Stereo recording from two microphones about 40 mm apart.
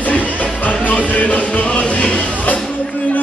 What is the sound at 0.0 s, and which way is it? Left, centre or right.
Music, left.